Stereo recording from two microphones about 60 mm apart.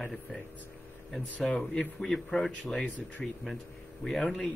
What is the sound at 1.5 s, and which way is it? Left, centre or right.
Speech, centre.